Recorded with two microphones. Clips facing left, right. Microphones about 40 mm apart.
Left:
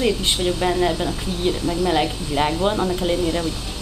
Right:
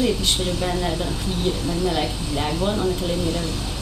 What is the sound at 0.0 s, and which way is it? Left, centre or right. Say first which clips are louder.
Speech: left 2 dB; left.